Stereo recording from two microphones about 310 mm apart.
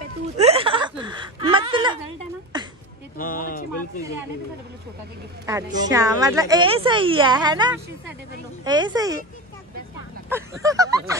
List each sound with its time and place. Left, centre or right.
0.4 s a sound: centre
3.2 s speech: left
5.9 s a woman's voice: centre
10.3 s a woman's voice: centre